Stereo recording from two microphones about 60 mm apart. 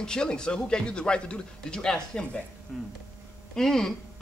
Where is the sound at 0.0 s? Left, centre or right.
Centre.